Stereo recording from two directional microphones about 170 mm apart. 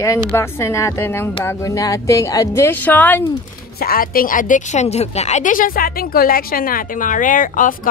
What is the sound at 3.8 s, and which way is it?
A woman's voice, 60° left (ahead or behind).